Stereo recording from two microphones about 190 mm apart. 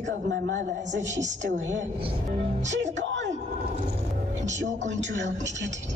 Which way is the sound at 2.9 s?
70° right (ahead or behind).